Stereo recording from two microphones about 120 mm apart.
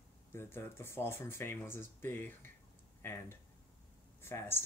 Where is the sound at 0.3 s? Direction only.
20° left (ahead or behind).